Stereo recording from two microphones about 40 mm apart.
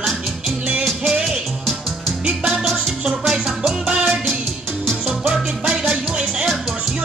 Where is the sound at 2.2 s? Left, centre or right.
Right.